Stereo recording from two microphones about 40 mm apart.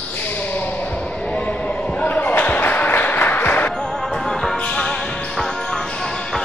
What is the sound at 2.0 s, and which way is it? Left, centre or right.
Basketball bounce, left.